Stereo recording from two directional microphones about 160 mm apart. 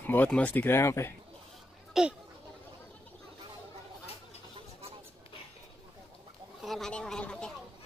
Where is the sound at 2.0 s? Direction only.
Centre (ahead or behind).